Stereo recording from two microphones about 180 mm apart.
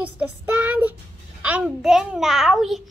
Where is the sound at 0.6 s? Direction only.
10° right (ahead or behind).